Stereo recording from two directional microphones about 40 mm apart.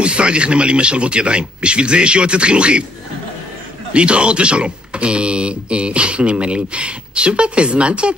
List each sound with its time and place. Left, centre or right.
0.0 s speech: right
3.9 s speech: right